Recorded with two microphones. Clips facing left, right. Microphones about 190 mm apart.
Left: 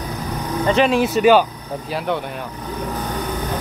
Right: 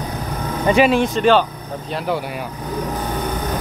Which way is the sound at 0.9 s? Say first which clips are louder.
Left 1 dB; 5° left (ahead or behind).